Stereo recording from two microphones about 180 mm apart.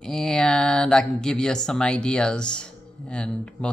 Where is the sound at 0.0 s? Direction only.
5° left (ahead or behind).